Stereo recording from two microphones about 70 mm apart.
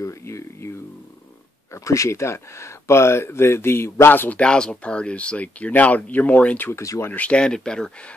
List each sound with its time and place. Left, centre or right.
0.0 s a sound: left
1.7 s speech: left
4.4 s speech: centre
6.7 s speech: left
7.2 s speech: centre